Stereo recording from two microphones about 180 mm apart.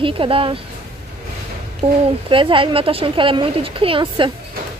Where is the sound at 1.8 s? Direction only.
35° right (ahead or behind).